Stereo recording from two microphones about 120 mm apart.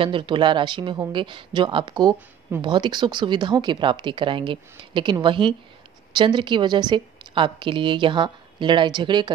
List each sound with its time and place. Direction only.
0.0 s a woman's voice: 45° right (ahead or behind)